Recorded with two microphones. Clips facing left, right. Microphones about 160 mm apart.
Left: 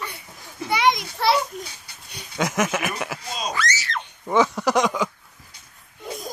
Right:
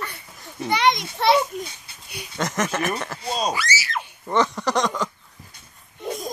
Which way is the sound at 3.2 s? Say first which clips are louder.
Right 6 dB; 30° right (ahead or behind).